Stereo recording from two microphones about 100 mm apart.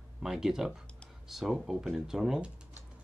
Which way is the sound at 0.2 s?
5° right (ahead or behind).